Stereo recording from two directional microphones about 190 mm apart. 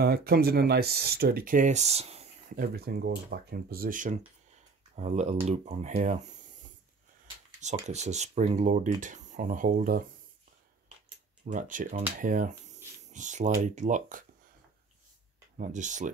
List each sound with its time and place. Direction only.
0.0 s speech: 55° right (ahead or behind); by 2.3 s 35° right (ahead or behind)
2.5 s speech: 50° right (ahead or behind)
7.6 s speech: 35° right (ahead or behind)
11.4 s speech: 45° right (ahead or behind)
15.5 s speech: 40° right (ahead or behind)